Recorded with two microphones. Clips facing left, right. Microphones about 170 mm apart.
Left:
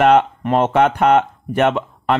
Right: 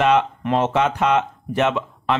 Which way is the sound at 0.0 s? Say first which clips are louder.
Left 4 dB; 55° left (ahead or behind).